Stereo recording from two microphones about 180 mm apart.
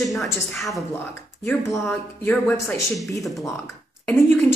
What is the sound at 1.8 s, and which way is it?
Speech, 10° left (ahead or behind).